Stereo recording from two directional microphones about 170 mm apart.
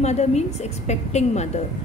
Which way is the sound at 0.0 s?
40° left (ahead or behind).